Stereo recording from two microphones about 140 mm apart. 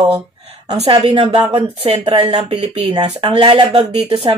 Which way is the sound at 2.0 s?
35° right (ahead or behind).